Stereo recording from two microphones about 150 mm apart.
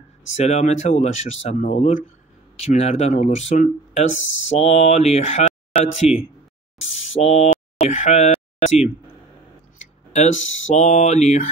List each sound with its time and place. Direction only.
0.4 s speech: 50° left (ahead or behind)
6.0 s speech: 5° right (ahead or behind)
7.0 s speech: 50° left (ahead or behind)